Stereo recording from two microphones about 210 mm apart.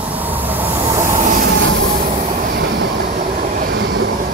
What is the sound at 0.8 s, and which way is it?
Train, 15° right (ahead or behind).